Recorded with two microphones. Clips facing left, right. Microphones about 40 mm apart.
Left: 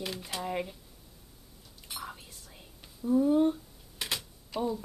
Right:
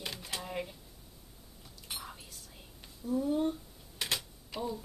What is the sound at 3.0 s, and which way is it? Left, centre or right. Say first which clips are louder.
Speech: left 7 dB; left.